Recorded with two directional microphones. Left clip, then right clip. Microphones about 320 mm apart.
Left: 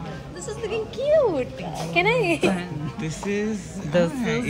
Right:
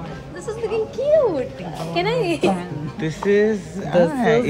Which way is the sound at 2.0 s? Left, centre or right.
Left.